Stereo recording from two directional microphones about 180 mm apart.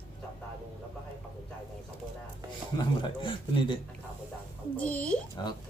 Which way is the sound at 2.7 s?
30° left (ahead or behind).